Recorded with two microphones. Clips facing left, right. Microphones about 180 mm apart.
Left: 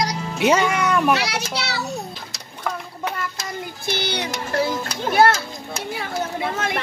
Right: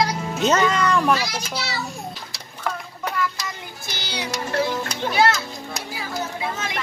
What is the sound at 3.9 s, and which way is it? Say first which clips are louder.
Music: left 6 dB; 60° left (ahead or behind).